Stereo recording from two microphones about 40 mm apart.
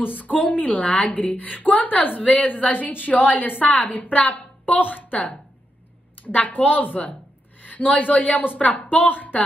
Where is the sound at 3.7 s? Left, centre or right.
Left.